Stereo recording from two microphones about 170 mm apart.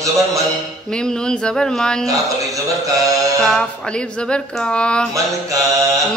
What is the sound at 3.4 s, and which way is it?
Music, 5° left (ahead or behind).